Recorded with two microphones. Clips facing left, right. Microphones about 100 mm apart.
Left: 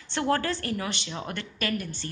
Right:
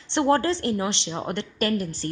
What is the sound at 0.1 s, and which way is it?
A woman's voice, 25° right (ahead or behind).